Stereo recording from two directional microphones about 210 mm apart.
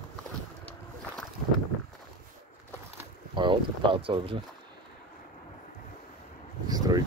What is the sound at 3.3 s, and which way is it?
Speech, 20° right (ahead or behind).